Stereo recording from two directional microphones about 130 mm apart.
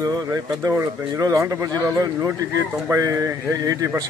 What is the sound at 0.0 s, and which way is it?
Speech, 30° right (ahead or behind).